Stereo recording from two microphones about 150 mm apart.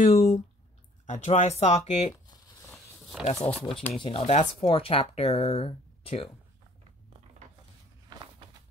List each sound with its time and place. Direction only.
0.0 s speech: 45° left (ahead or behind)
2.2 s a sound: 25° left (ahead or behind)
3.3 s speech: 40° left (ahead or behind)
3.7 s speech: 5° left (ahead or behind)
4.0 s speech: 40° left (ahead or behind)